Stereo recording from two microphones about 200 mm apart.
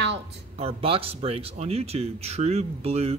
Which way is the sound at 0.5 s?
30° right (ahead or behind).